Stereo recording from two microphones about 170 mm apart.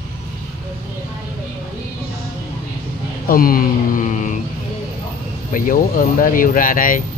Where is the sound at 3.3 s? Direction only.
60° left (ahead or behind).